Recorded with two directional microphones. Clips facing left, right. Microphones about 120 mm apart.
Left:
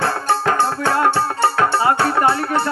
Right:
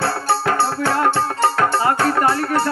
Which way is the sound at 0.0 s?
50° left (ahead or behind).